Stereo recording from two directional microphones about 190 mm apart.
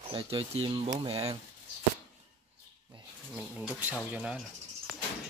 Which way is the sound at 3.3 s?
5° right (ahead or behind).